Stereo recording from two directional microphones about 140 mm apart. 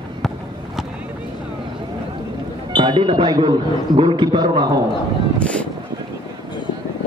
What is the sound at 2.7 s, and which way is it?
A man's voice, 35° right (ahead or behind).